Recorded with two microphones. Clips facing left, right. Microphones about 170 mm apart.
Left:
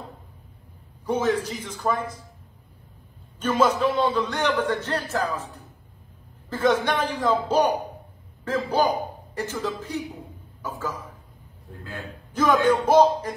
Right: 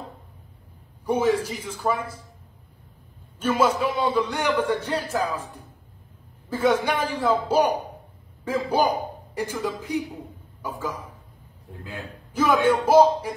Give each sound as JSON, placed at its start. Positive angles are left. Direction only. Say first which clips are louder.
{"t": 1.0, "sound": "a man's voice", "louder": "right 2 dB", "side_deg": -10}
{"t": 3.3, "sound": "a man's voice", "louder": "even", "side_deg": -10}